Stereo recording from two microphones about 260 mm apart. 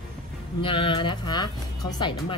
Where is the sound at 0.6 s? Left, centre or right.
Centre.